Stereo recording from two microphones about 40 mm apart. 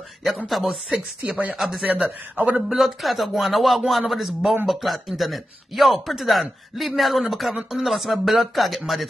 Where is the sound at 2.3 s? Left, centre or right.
Right.